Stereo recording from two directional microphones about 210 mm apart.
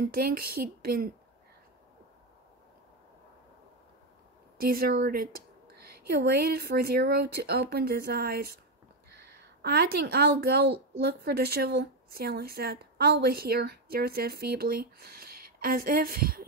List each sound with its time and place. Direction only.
0.1 s speech: 45° right (ahead or behind)
4.6 s a woman's voice: 45° right (ahead or behind)